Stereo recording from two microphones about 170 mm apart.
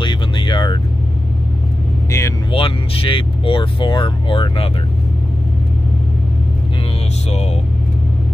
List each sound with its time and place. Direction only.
0.0 s music: 30° left (ahead or behind)
2.0 s vehicle: 15° left (ahead or behind)
2.5 s speech: 35° left (ahead or behind)